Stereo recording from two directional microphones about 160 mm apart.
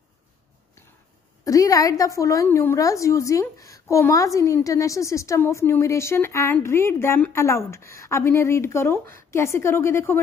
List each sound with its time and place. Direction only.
1.4 s a woman's voice: 20° left (ahead or behind)